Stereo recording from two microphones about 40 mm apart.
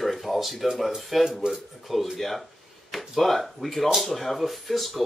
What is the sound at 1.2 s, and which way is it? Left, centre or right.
Speech, centre.